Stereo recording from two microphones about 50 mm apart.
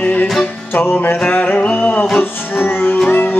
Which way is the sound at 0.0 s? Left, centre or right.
Left.